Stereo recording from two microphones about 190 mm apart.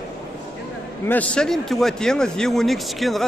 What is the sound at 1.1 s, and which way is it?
Speech, 5° left (ahead or behind).